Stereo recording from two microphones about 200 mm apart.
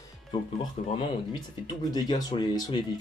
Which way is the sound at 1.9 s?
20° left (ahead or behind).